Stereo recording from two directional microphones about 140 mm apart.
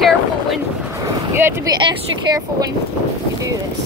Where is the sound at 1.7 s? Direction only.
30° right (ahead or behind).